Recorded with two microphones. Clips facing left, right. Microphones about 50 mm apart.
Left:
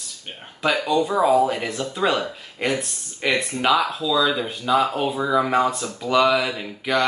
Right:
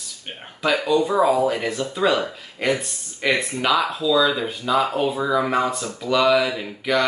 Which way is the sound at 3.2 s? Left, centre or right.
Centre.